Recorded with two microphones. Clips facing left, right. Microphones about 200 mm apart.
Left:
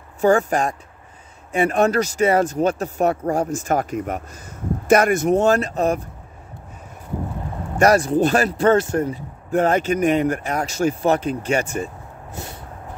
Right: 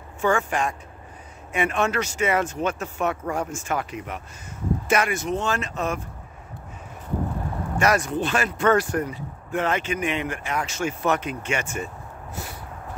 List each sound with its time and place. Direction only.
0.2 s speech: 35° left (ahead or behind)
7.8 s speech: 35° left (ahead or behind)